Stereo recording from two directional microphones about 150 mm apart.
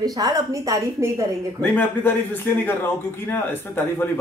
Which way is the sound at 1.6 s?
10° left (ahead or behind).